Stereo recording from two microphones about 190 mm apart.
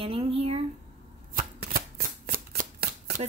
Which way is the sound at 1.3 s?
45° right (ahead or behind).